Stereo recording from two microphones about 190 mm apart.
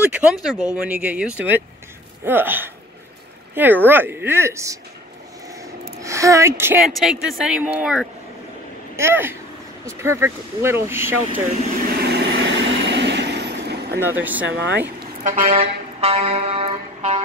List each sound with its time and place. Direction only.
0.0 s speech: 5° right (ahead or behind)
5.5 s a sound: 15° right (ahead or behind)
6.8 s speech: centre (ahead or behind)
12.0 s vehicle: 65° right (ahead or behind)
13.9 s speech: 10° right (ahead or behind)
14.4 s speech: 65° right (ahead or behind)
15.0 s a sound: 40° right (ahead or behind)